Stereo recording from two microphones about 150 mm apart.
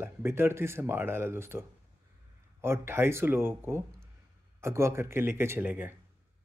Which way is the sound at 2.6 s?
15° right (ahead or behind).